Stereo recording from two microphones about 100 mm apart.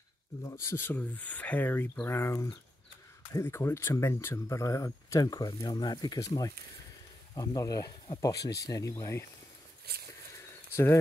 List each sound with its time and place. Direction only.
0.4 s speech: 30° left (ahead or behind)